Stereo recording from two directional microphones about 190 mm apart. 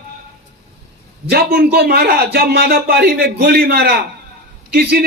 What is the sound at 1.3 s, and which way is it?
A man's voice, 55° right (ahead or behind).